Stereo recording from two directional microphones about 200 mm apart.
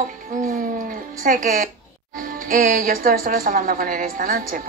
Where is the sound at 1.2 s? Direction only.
45° right (ahead or behind).